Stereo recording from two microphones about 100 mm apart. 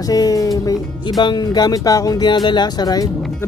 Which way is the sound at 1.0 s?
45° left (ahead or behind).